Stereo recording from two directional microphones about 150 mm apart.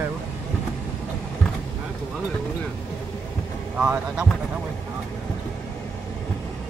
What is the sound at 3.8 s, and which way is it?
Speech, 20° right (ahead or behind).